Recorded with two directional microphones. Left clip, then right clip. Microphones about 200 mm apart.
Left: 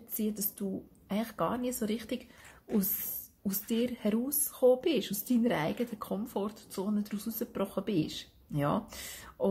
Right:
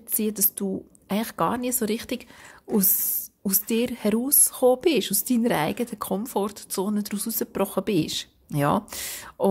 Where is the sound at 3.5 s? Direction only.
40° right (ahead or behind).